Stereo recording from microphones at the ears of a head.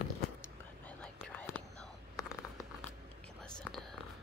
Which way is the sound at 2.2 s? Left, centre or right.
Left.